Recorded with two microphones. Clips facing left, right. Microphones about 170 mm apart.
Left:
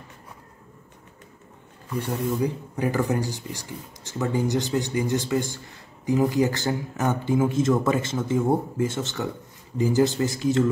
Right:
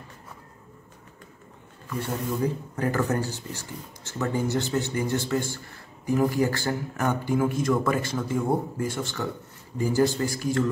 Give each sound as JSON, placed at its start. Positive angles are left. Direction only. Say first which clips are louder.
{"t": 1.9, "sound": "a man's voice", "louder": "left 3 dB", "side_deg": 15}